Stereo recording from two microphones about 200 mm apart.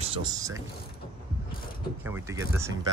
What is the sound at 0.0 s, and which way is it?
Speech, 25° right (ahead or behind).